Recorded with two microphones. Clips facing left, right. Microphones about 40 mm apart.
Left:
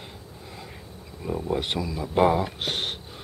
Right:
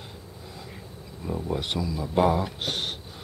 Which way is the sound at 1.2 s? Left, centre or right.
Centre.